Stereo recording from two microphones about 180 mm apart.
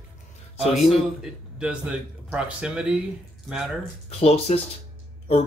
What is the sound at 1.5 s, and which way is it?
Speech, 5° right (ahead or behind).